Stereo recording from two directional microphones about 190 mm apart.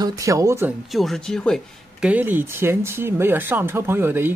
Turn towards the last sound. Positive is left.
turn(degrees=-10)  # may be behind; listen again after turning